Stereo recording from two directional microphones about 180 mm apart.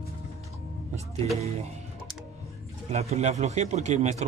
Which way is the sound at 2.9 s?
35° right (ahead or behind).